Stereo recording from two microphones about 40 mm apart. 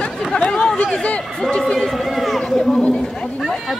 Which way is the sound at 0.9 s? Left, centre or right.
Left.